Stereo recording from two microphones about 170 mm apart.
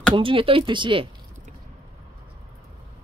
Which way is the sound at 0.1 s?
30° right (ahead or behind).